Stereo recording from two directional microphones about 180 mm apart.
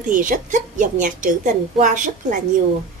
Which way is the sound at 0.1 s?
45° right (ahead or behind).